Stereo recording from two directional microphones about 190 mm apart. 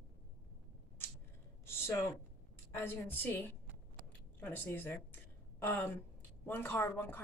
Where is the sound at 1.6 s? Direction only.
10° left (ahead or behind).